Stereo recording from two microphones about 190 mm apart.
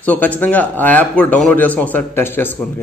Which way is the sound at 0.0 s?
10° left (ahead or behind).